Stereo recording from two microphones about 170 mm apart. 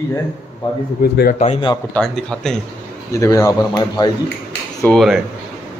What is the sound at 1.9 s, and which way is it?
Speech, 5° left (ahead or behind).